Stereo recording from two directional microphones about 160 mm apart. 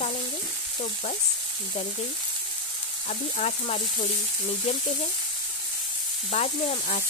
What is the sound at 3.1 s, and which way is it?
Frying, 45° left (ahead or behind).